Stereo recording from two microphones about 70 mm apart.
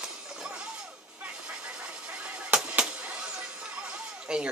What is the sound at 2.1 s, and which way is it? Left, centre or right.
Honk, centre.